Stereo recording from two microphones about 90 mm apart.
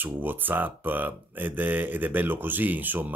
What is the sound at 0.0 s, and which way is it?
Speech, 20° right (ahead or behind).